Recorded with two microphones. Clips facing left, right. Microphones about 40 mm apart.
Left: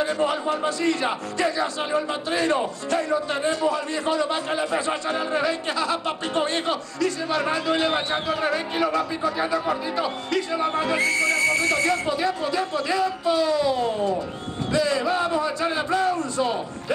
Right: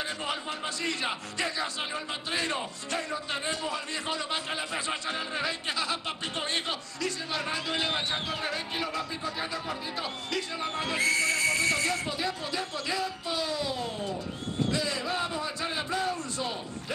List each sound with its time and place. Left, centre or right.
0.0 s speech: left
1.9 s speech: left
3.3 s a man's voice: left
5.3 s speech: left
7.4 s speech: left
10.5 s speech: left
11.0 s speech: centre
11.8 s speech: centre